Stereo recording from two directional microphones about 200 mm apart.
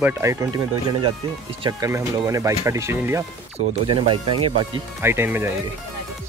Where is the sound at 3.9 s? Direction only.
25° right (ahead or behind).